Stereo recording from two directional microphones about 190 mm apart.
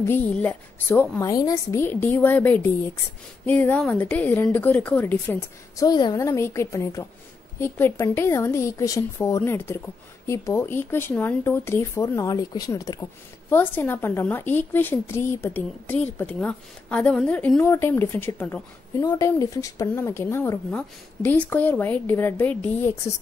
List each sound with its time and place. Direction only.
0.0 s a woman's voice: 10° left (ahead or behind)
5.9 s a woman's voice: 20° left (ahead or behind)